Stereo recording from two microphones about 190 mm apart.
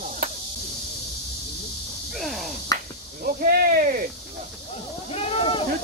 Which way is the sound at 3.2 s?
50° right (ahead or behind).